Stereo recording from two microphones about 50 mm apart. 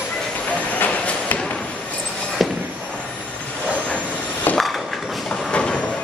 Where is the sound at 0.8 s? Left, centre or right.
Left.